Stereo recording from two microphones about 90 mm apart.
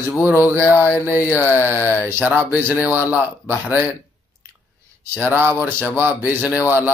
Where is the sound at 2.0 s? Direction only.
25° right (ahead or behind).